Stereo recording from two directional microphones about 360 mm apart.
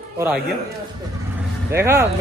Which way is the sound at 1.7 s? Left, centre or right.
Centre.